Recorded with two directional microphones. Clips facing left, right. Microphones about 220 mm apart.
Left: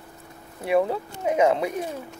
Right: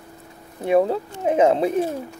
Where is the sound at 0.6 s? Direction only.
30° right (ahead or behind).